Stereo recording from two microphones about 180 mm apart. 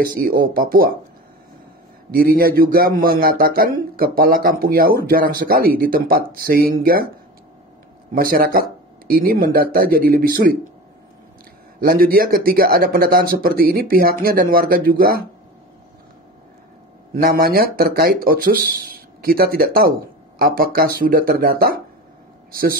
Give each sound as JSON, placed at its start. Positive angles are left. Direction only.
{"t": 0.0, "sound": "a man's voice", "side_deg": -50}
{"t": 2.0, "sound": "a man's voice", "side_deg": -50}
{"t": 8.1, "sound": "a man's voice", "side_deg": -55}
{"t": 11.8, "sound": "speech", "side_deg": -55}
{"t": 17.1, "sound": "speech", "side_deg": -55}